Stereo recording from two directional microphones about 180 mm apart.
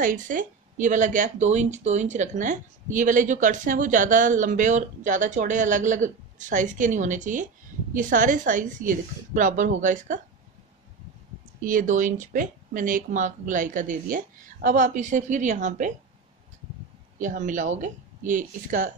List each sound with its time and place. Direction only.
0.0 s speech: 45° right (ahead or behind)
11.6 s speech: 45° right (ahead or behind)
17.2 s speech: 45° right (ahead or behind)